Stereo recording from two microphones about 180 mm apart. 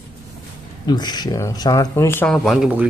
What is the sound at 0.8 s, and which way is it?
Speech, 25° left (ahead or behind).